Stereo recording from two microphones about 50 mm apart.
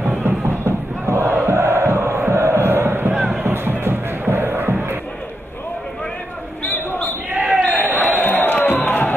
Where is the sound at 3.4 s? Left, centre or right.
Right.